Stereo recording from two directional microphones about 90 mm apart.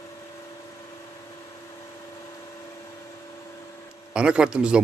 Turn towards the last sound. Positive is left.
turn(degrees=-10)  # may be behind; listen again after turning